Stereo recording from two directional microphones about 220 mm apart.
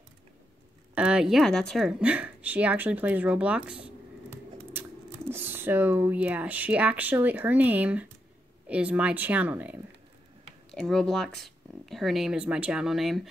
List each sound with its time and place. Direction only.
0.9 s speech: 5° right (ahead or behind)